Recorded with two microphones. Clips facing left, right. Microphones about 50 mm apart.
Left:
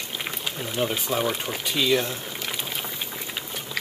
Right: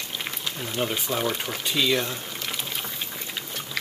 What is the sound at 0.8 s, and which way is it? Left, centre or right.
Speech, centre.